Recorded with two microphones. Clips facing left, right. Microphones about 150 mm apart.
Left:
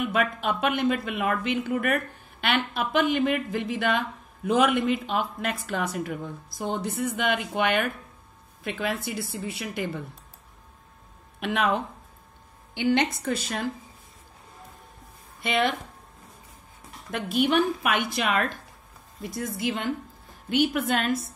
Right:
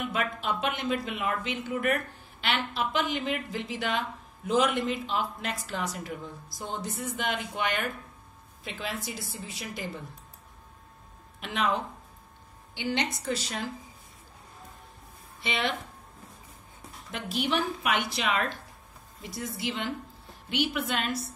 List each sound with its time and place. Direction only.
0.1 s speech: 55° left (ahead or behind)
11.3 s speech: 60° left (ahead or behind)
15.4 s speech: 45° left (ahead or behind)
17.1 s speech: 55° left (ahead or behind)